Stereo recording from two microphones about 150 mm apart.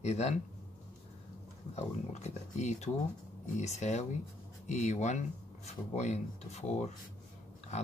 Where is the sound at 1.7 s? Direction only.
50° left (ahead or behind).